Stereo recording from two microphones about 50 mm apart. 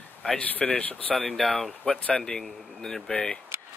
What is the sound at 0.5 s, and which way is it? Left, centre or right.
Speech, left.